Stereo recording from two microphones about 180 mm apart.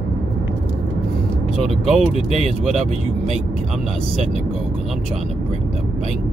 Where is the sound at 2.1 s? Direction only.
35° right (ahead or behind).